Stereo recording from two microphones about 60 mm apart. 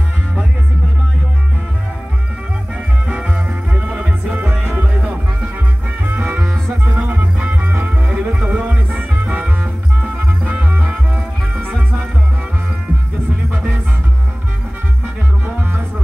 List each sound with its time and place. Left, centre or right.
3.1 s music: centre
7.0 s music: right